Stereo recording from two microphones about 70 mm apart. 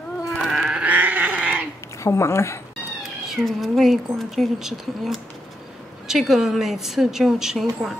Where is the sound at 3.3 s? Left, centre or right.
Centre.